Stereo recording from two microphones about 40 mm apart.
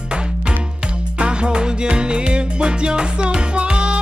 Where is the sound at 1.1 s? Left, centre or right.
Right.